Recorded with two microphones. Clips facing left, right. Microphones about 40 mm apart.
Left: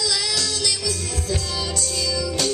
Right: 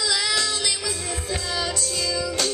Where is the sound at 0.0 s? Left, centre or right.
Centre.